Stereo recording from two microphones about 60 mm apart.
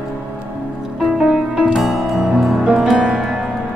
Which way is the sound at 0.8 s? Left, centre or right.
Centre.